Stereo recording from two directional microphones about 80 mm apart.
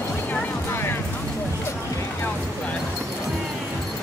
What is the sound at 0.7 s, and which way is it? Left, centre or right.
Music, left.